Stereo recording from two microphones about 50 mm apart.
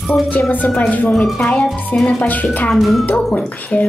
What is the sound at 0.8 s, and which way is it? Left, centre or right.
Speech, left.